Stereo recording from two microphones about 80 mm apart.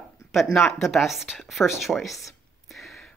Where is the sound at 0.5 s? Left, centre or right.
Centre.